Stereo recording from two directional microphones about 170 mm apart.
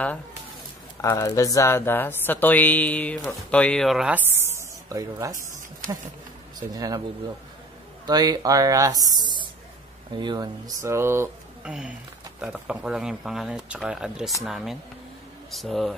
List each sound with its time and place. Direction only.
1.0 s speech: 20° left (ahead or behind); by 5.4 s 20° right (ahead or behind)
6.7 s speech: 20° right (ahead or behind)
8.1 s speech: 20° right (ahead or behind)
12.4 s speech: 5° right (ahead or behind)